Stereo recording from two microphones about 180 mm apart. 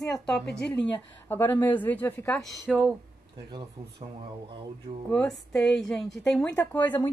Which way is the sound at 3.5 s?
25° right (ahead or behind).